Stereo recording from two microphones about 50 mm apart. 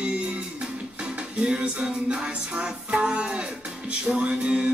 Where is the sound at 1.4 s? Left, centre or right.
Right.